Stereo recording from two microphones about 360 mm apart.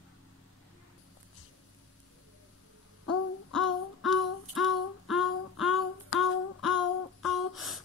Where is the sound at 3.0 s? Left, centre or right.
Left.